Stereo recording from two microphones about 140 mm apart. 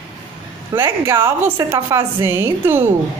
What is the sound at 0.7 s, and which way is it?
A woman's voice, 20° right (ahead or behind).